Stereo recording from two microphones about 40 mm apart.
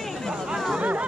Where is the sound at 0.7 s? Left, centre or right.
Right.